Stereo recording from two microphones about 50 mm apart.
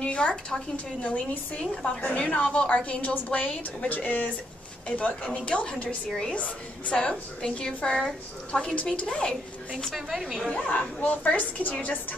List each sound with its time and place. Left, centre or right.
0.0 s a woman's voice: left
1.0 s a woman's voice: left
9.9 s a woman's voice: centre
10.5 s a woman's voice: left